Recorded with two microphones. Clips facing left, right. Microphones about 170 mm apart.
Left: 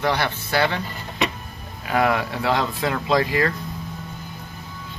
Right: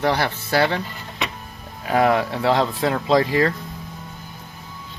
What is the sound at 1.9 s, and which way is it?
Speech, 35° right (ahead or behind).